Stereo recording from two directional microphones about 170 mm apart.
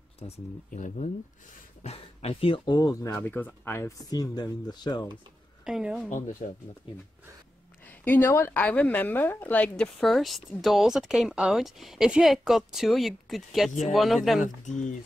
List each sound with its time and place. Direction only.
0.2 s speech: 35° left (ahead or behind)
0.7 s speech: 50° left (ahead or behind); by 5.0 s 25° left (ahead or behind)
5.7 s a woman's voice: 5° right (ahead or behind)
6.0 s speech: 50° left (ahead or behind)
7.8 s a woman's voice: 10° left (ahead or behind)
14.4 s speech: 45° left (ahead or behind)